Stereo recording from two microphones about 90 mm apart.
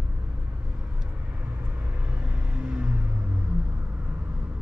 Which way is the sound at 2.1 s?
10° right (ahead or behind).